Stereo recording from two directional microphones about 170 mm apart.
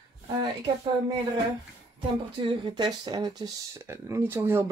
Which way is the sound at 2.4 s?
25° right (ahead or behind).